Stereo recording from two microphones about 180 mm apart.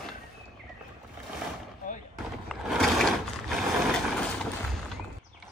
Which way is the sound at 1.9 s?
45° left (ahead or behind).